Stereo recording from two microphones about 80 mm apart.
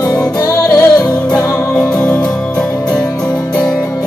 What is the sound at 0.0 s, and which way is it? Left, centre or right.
Music, left.